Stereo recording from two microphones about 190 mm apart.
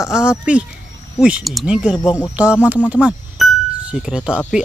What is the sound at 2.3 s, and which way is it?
Speech, 5° right (ahead or behind).